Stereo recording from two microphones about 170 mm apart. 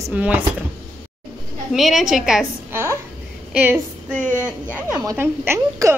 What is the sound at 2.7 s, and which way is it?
A woman's voice, 15° right (ahead or behind).